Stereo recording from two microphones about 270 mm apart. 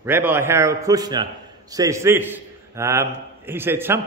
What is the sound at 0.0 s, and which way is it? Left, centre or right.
A man's voice, centre.